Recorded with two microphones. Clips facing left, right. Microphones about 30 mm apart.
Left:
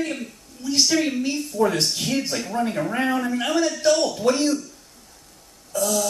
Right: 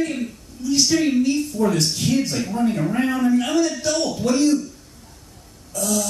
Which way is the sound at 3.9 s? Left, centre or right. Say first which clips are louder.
Left 1 dB; centre.